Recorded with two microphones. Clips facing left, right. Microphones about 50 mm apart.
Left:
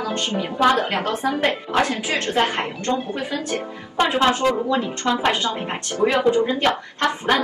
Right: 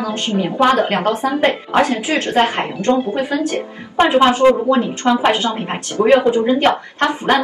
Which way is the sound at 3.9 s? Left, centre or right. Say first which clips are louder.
Right 6 dB; right.